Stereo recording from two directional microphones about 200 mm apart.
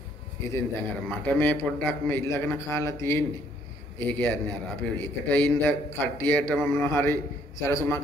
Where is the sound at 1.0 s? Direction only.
10° left (ahead or behind).